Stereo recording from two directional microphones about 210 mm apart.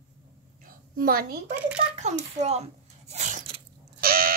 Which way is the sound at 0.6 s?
45° right (ahead or behind).